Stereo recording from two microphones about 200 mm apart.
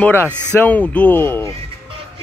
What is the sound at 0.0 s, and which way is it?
Speech, 10° left (ahead or behind).